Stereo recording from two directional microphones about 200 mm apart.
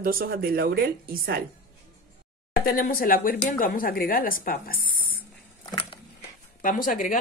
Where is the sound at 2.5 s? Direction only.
45° left (ahead or behind).